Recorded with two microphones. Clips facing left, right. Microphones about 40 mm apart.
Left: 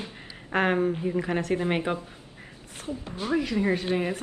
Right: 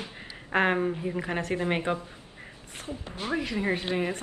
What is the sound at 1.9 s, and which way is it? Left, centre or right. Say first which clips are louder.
Speech: even; left.